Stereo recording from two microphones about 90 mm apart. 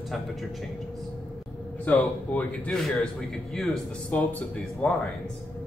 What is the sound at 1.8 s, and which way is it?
Speech, 20° left (ahead or behind).